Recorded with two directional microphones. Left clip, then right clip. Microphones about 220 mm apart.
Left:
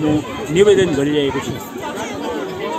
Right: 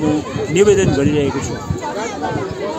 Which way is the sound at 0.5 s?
30° right (ahead or behind).